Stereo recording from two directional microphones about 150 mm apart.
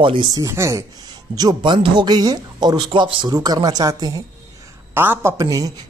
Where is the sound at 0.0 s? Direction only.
30° right (ahead or behind).